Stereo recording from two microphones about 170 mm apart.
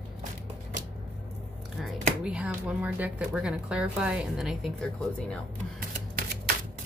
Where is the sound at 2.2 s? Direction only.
5° right (ahead or behind).